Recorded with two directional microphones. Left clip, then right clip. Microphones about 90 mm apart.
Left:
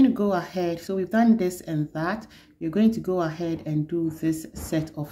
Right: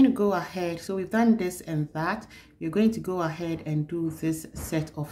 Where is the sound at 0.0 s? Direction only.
10° left (ahead or behind).